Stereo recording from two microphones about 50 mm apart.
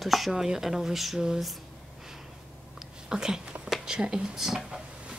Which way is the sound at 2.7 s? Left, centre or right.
Centre.